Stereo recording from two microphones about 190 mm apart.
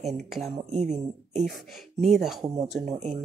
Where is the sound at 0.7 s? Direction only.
35° right (ahead or behind).